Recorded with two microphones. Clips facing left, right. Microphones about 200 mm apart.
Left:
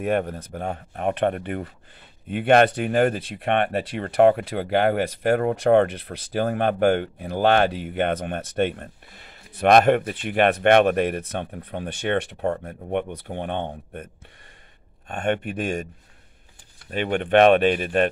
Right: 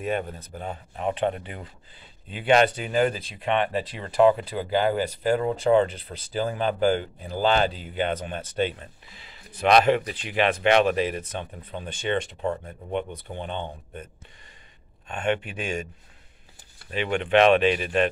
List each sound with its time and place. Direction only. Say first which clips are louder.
0.0 s speech: left 5 dB; 65° left (ahead or behind)
15.0 s speech: left 2 dB; 50° left (ahead or behind)
16.9 s speech: left 2 dB; 50° left (ahead or behind)